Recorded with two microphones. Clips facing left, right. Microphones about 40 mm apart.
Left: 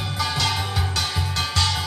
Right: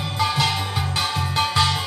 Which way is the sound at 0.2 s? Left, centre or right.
Centre.